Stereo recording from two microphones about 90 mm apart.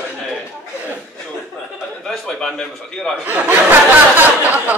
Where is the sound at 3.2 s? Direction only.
20° right (ahead or behind).